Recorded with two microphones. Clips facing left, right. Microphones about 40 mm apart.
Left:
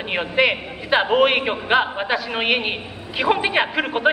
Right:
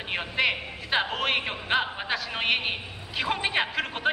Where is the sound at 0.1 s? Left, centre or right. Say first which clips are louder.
Left 7 dB; centre.